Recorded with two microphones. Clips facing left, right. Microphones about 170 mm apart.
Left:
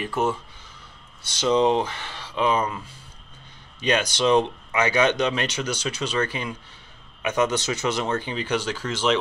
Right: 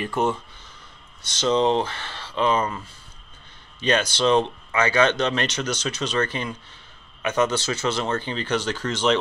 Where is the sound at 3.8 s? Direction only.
15° left (ahead or behind).